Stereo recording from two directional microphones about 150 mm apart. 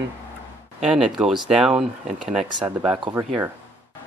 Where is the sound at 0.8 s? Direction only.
5° right (ahead or behind).